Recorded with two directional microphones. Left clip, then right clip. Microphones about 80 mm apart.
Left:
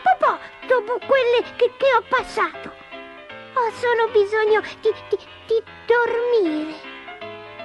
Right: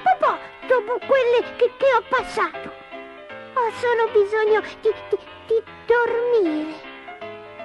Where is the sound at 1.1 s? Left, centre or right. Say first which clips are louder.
Even; left.